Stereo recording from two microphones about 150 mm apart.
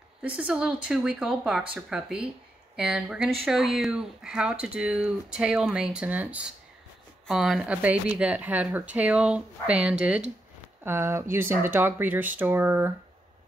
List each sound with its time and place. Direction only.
0.2 s speech: 10° right (ahead or behind)